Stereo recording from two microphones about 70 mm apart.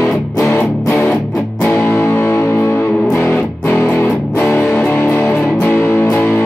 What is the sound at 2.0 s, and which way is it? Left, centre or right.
Music, left.